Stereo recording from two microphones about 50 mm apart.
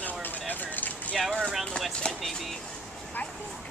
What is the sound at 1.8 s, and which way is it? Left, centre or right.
Speech, centre.